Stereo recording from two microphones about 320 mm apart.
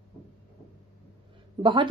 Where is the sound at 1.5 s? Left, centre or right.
Centre.